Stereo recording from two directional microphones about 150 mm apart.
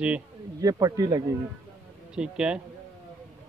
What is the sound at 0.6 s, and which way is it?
Speech, 25° right (ahead or behind).